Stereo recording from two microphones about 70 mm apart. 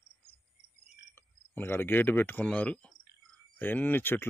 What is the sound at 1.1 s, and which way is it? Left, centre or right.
Speech, left.